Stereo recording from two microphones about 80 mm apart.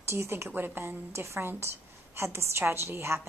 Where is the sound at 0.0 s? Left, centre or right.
Right.